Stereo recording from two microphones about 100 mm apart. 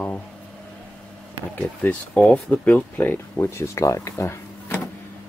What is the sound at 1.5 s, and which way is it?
Speech, 15° left (ahead or behind).